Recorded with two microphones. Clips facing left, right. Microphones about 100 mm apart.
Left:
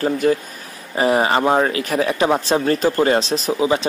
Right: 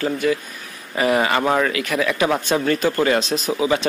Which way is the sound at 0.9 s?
30° left (ahead or behind).